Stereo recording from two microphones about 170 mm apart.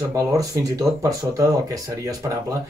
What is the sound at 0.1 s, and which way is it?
Speech, 20° right (ahead or behind).